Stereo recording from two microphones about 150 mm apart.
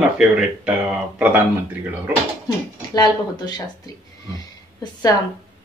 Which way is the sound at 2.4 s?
25° left (ahead or behind).